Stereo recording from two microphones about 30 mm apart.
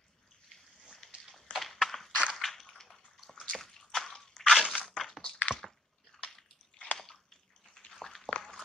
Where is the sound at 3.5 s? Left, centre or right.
Centre.